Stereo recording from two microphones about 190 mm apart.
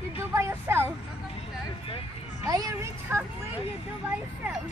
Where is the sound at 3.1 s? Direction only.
10° right (ahead or behind).